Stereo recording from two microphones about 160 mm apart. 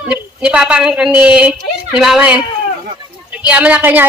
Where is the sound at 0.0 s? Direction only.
5° right (ahead or behind).